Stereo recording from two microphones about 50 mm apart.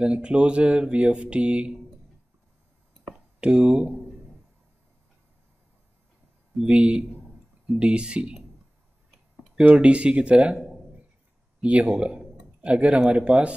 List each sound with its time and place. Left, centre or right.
0.0 s speech: right
3.3 s speech: right
6.6 s speech: right
9.8 s speech: right
11.6 s a man's voice: right